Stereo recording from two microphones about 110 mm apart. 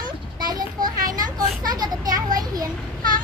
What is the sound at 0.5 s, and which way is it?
Children playing, 35° right (ahead or behind).